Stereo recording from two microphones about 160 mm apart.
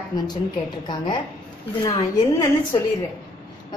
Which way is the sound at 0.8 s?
30° left (ahead or behind).